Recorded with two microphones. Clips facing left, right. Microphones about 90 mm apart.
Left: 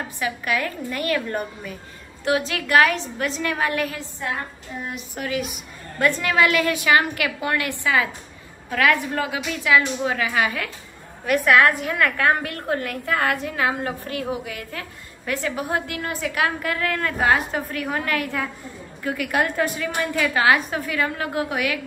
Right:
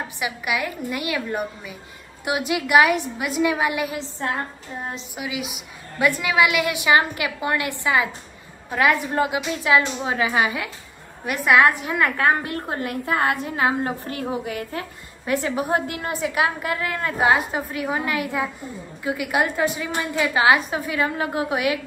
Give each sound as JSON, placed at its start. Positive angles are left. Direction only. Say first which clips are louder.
{"t": 0.2, "sound": "a woman's voice", "louder": "left 1 dB", "side_deg": -15}
{"t": 4.2, "sound": "child singing", "louder": "right 2 dB", "side_deg": -35}
{"t": 5.1, "sound": "a woman's voice", "louder": "left 6 dB", "side_deg": -5}